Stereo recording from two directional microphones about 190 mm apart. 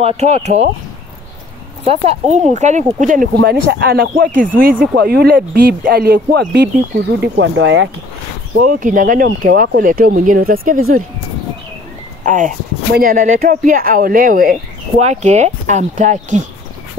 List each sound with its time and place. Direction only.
0.0 s speech: 35° right (ahead or behind)
1.9 s speech: 35° right (ahead or behind); by 6.7 s 60° right (ahead or behind)
7.2 s speech: 80° right
8.6 s speech: 45° right (ahead or behind)
12.3 s speech: 40° right (ahead or behind)
15.0 s speech: 35° right (ahead or behind)